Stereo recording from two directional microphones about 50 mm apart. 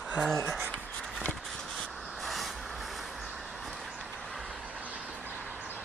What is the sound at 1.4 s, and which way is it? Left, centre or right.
Crow, centre.